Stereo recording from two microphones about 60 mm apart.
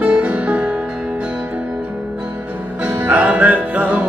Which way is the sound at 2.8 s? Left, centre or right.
Right.